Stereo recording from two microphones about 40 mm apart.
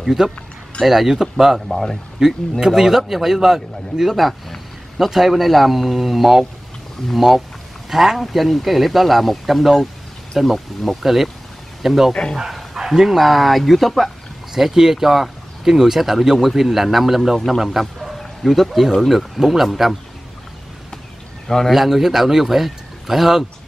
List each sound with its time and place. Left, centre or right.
0.0 s speech: centre
1.7 s speech: centre
2.2 s a man's voice: centre
12.1 s speech: centre
12.4 s a man's voice: centre
14.5 s a man's voice: centre
21.5 s speech: centre
21.7 s a man's voice: centre